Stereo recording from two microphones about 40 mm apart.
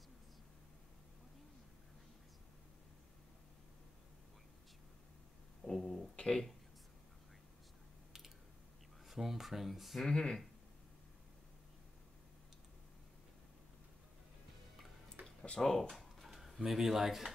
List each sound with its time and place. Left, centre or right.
5.7 s speech: centre
9.0 s speech: centre
10.0 s speech: centre
15.6 s speech: centre
15.9 s drawer open or close: centre